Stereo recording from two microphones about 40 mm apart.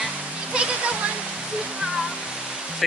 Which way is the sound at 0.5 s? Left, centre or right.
Right.